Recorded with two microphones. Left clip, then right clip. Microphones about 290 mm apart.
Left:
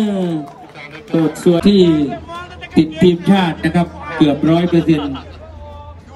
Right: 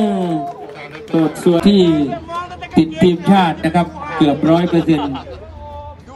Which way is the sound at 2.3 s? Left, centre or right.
Right.